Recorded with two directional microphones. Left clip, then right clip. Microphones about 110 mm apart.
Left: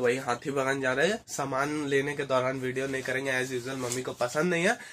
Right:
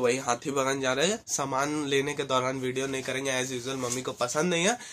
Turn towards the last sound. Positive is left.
turn(degrees=-15)  # may be behind; listen again after turning